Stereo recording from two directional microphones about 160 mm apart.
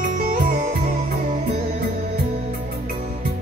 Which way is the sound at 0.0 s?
60° right (ahead or behind).